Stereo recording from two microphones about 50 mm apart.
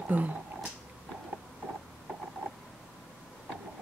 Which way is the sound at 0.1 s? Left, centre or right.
Right.